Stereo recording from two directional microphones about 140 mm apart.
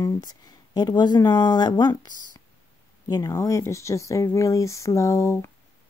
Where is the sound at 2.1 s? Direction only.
70° right (ahead or behind).